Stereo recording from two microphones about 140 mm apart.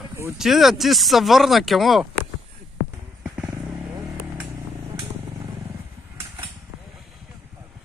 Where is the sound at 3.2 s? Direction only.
10° right (ahead or behind).